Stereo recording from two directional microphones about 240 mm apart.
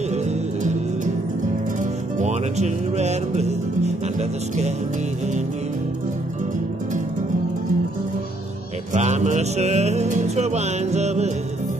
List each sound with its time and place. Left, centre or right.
1.8 s music: right
8.9 s music: right